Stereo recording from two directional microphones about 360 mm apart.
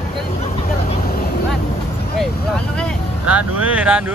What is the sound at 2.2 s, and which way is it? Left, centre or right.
Vehicle, centre.